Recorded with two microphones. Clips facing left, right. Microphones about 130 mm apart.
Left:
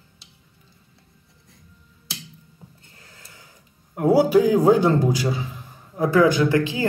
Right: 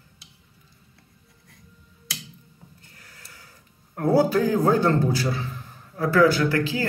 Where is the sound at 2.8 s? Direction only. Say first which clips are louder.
Left 1 dB; 25° left (ahead or behind).